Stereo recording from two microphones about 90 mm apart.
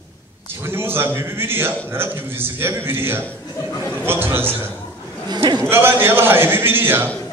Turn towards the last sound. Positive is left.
turn(degrees=-25)  # may be behind; listen again after turning